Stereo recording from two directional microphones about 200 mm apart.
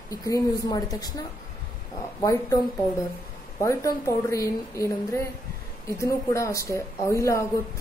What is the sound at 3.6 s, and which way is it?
Speech, 15° left (ahead or behind).